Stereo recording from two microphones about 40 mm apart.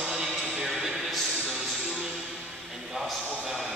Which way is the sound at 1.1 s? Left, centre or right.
Centre.